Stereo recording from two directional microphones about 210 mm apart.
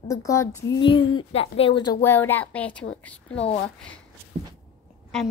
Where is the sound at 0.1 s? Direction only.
15° left (ahead or behind).